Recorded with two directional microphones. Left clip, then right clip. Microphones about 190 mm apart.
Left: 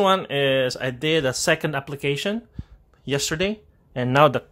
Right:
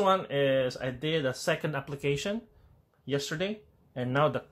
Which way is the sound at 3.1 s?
55° left (ahead or behind).